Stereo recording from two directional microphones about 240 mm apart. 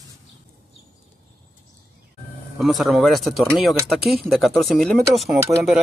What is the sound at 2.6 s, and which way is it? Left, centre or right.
Speech, centre.